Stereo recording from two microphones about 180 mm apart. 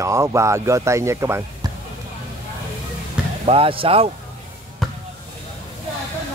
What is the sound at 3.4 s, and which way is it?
Speech, 30° right (ahead or behind).